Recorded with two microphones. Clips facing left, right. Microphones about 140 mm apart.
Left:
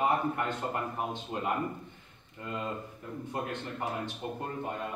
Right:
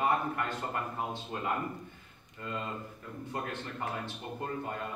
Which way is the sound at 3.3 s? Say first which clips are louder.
Left 1 dB; 15° left (ahead or behind).